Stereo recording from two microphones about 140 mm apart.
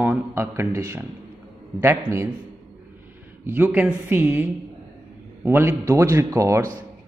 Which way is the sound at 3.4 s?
10° right (ahead or behind).